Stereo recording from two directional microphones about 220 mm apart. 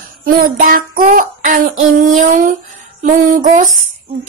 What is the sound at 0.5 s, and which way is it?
Child singing, 40° right (ahead or behind).